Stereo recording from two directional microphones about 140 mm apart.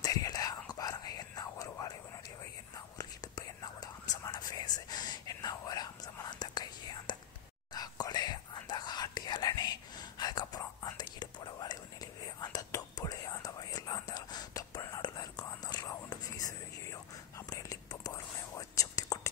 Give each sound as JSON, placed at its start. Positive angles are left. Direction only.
{"t": 0.0, "sound": "whispering", "side_deg": 25}
{"t": 3.0, "sound": "whispering", "side_deg": 25}